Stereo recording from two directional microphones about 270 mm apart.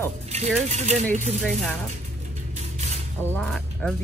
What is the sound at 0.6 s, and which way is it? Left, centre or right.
Speech, right.